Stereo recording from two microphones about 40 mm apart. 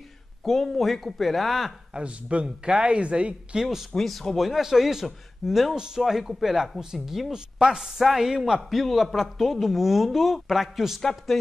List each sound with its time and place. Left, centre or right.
0.4 s a man's voice: centre
2.0 s speech: right
3.9 s speech: centre
4.4 s a man's voice: centre
11.0 s speech: centre